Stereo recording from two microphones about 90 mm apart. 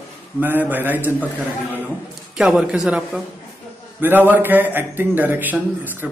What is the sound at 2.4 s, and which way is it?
Speech, 10° right (ahead or behind).